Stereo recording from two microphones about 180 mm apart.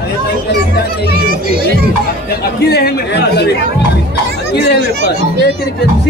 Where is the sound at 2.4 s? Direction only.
60° left (ahead or behind).